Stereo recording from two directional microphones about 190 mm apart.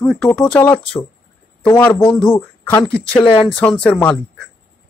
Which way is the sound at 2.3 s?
10° left (ahead or behind).